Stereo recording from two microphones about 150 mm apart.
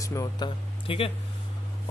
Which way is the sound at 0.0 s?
20° left (ahead or behind).